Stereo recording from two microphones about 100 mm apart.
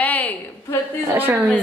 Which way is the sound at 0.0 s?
15° left (ahead or behind).